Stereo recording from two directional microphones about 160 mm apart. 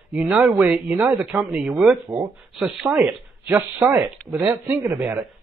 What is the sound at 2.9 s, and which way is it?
Speech, 15° right (ahead or behind).